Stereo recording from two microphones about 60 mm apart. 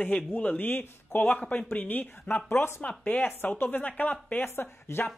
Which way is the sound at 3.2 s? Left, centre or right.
Left.